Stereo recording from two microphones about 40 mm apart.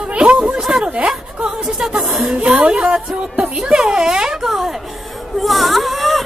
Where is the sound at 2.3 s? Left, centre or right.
Right.